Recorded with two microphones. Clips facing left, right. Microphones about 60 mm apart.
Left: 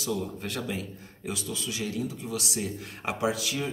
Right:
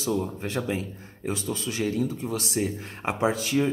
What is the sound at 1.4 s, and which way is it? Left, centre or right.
Speech, right.